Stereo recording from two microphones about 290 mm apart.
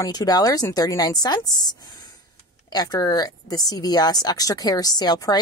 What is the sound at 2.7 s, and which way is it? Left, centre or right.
Speech, centre.